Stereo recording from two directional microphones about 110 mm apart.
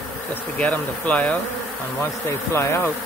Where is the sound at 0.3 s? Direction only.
15° left (ahead or behind).